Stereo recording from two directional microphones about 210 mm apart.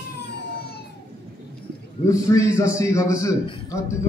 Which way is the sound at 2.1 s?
15° left (ahead or behind).